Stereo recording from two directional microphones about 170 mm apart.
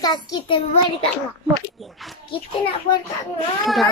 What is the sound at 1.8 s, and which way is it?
Speech, centre (ahead or behind).